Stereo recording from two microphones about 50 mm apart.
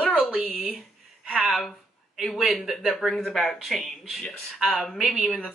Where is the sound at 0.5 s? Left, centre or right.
Centre.